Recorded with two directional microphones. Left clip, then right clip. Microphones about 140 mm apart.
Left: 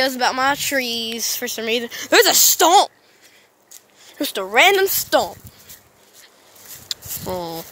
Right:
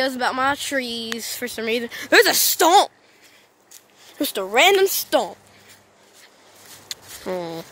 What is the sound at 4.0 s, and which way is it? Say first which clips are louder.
Speech: left 1 dB; 15° right (ahead or behind).